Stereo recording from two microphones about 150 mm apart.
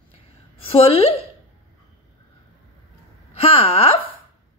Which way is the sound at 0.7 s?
40° left (ahead or behind).